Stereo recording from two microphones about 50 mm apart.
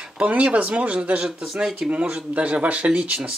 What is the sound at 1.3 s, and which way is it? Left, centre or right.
Speech, centre.